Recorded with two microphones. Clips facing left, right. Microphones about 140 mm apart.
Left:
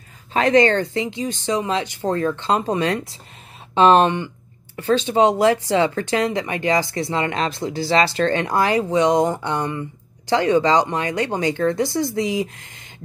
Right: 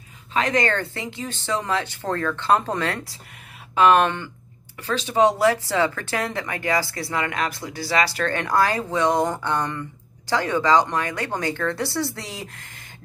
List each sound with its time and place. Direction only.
0.3 s speech: 30° left (ahead or behind); by 12.8 s 15° left (ahead or behind)